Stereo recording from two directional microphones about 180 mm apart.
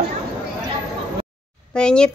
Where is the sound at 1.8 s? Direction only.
5° left (ahead or behind).